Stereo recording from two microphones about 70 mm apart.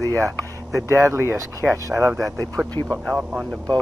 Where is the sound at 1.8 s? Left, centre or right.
Right.